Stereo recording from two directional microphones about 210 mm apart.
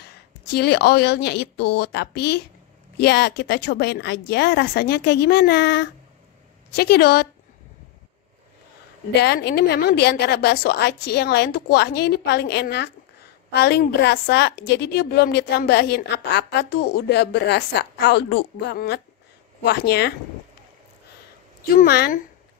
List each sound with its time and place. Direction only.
0.5 s a woman's voice: 50° left (ahead or behind)
9.1 s a woman's voice: 50° left (ahead or behind)
21.6 s a woman's voice: 45° left (ahead or behind)